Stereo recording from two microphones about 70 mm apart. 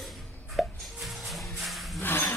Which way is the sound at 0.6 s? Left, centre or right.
Centre.